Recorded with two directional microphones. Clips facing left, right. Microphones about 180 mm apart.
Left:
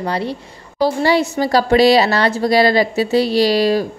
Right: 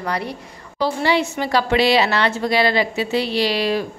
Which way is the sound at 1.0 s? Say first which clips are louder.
Left 2 dB; 40° left (ahead or behind).